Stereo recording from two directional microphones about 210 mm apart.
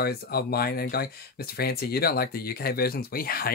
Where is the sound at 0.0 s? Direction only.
50° left (ahead or behind).